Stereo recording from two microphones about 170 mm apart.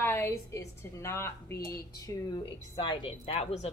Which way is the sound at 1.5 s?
65° left (ahead or behind).